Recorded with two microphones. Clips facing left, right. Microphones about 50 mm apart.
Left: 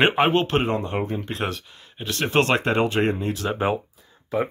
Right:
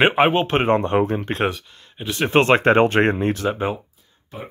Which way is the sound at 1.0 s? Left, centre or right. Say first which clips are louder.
Right 7 dB; right.